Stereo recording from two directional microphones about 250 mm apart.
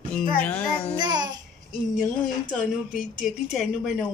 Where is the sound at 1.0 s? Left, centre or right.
Centre.